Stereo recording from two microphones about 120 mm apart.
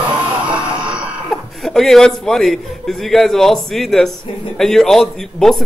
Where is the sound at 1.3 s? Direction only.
Centre (ahead or behind).